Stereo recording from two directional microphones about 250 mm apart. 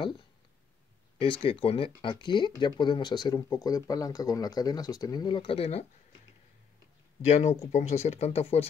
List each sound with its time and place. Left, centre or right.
1.4 s speech: left
7.2 s speech: left